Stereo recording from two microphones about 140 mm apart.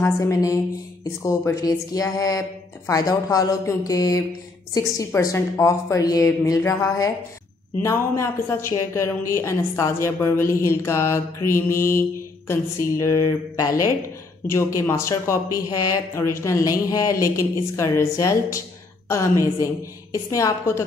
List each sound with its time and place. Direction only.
0.0 s a woman's voice: 25° left (ahead or behind)